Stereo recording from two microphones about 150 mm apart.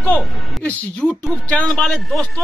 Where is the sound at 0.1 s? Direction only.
10° left (ahead or behind).